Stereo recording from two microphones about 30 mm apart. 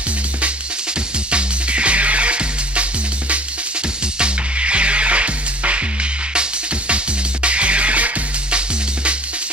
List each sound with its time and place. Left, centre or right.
1.3 s music: right
7.4 s music: right
8.5 s music: right